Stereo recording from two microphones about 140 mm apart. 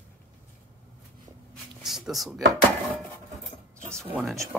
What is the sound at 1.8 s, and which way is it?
Speech, centre (ahead or behind).